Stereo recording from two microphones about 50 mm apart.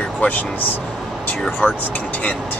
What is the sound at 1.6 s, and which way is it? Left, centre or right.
Speech, left.